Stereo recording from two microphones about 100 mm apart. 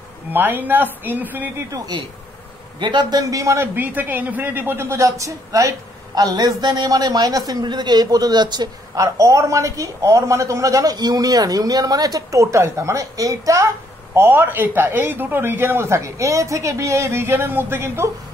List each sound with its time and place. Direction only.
0.3 s a man's voice: 20° right (ahead or behind)
2.8 s a man's voice: 50° right (ahead or behind); by 13.7 s 35° right (ahead or behind)
14.1 s a man's voice: 25° right (ahead or behind)